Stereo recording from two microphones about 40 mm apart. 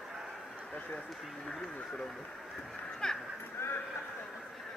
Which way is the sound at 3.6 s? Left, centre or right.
Left.